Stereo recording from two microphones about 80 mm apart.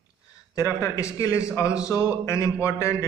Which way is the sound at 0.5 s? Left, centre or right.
Left.